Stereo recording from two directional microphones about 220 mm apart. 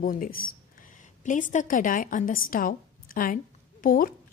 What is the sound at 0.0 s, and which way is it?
A woman's voice, 40° left (ahead or behind).